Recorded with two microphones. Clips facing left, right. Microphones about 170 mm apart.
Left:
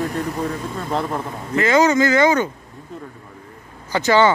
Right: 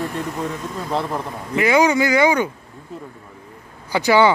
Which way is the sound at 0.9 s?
Centre (ahead or behind).